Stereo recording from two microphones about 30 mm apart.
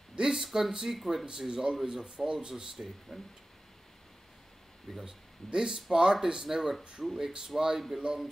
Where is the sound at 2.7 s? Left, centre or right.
Centre.